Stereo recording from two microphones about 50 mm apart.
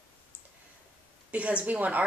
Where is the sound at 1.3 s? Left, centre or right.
Right.